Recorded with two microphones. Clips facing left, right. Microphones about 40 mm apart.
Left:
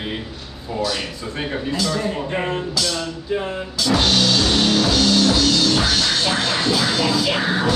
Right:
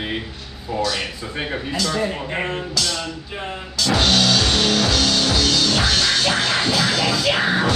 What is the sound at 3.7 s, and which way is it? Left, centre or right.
Music, centre.